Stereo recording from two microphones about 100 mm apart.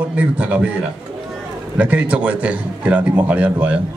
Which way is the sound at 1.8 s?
15° right (ahead or behind).